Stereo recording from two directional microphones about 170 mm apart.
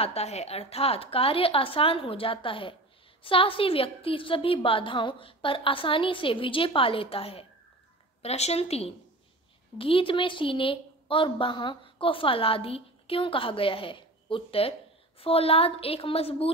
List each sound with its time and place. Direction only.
0.0 s a woman's voice: 40° left (ahead or behind)